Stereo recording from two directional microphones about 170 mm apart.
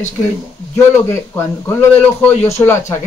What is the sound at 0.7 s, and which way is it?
Speech, 15° left (ahead or behind).